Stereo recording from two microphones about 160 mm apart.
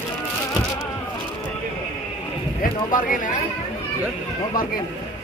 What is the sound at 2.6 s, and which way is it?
Speech, 60° left (ahead or behind).